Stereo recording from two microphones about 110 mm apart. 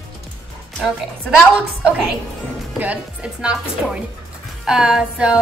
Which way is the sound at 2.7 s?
15° right (ahead or behind).